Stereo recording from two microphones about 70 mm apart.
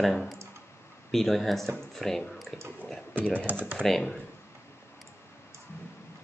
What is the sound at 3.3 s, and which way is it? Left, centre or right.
Speech, right.